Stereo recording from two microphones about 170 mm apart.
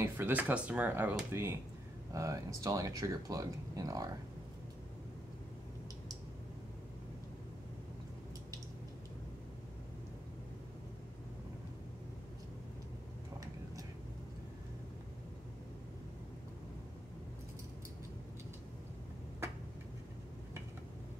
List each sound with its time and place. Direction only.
0.0 s speech: 10° right (ahead or behind)